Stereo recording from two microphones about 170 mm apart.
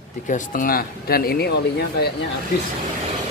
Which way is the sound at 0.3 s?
55° left (ahead or behind).